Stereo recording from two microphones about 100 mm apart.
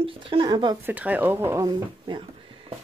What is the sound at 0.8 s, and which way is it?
Speech, 15° right (ahead or behind).